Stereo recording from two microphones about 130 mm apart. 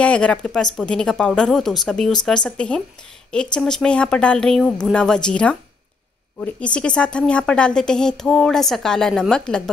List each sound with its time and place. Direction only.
0.0 s a woman's voice: 10° left (ahead or behind)